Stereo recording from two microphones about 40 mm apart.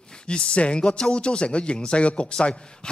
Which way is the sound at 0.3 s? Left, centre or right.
Left.